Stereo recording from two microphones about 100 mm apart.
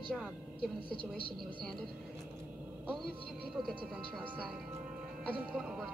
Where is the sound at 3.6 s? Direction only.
Centre (ahead or behind).